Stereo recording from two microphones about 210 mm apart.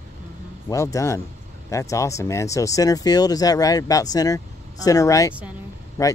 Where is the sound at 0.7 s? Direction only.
15° left (ahead or behind).